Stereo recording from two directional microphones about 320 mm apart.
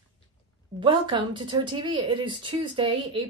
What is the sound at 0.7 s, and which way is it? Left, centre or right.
A woman's voice, centre.